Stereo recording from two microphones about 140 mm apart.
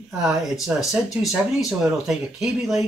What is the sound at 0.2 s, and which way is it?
Speech, 5° right (ahead or behind).